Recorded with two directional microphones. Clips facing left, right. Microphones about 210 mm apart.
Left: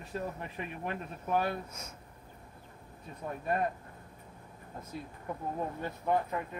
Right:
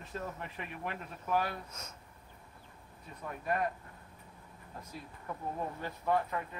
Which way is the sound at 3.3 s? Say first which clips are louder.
Left 2 dB; 30° left (ahead or behind).